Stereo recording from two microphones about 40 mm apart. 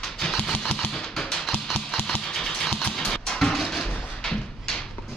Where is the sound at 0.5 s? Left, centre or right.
Centre.